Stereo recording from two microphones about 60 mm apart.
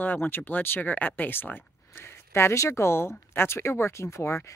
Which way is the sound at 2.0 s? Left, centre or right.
Left.